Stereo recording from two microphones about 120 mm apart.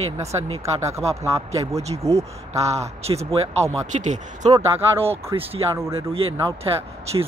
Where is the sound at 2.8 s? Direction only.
60° right (ahead or behind).